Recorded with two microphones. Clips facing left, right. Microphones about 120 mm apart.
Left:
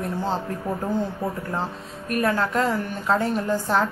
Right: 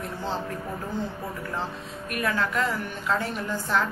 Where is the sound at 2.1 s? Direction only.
40° left (ahead or behind).